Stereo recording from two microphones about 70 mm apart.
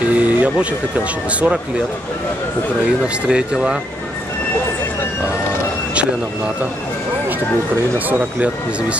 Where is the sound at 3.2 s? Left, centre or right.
Centre.